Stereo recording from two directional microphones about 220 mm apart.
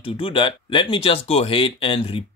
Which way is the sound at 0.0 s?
25° left (ahead or behind).